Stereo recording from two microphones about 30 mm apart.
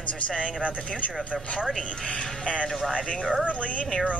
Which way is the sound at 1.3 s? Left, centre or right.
Centre.